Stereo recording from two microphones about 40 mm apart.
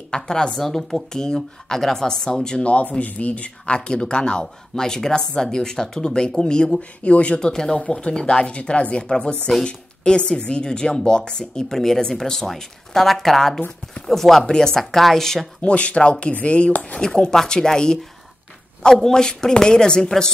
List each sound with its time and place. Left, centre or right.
0.1 s speech: centre
2.6 s speech: left
6.8 s speech: left; by 13.6 s centre
13.6 s a woman's voice: left
14.0 s speech: centre
14.4 s speech: centre
15.0 s speech: centre
15.6 s speech: left
17.3 s speech: centre
18.9 s speech: centre